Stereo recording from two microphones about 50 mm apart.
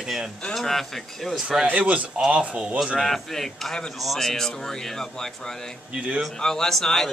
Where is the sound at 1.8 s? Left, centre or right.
Right.